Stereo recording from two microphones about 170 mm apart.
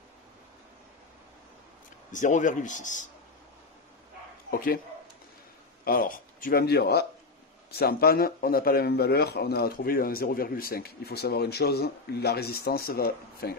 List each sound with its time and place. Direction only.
2.1 s a man's voice: 45° left (ahead or behind)
4.5 s speech: 60° left (ahead or behind)
5.9 s speech: 55° left (ahead or behind)